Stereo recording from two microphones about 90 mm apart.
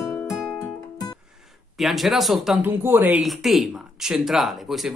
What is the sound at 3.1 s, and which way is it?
Music, centre (ahead or behind).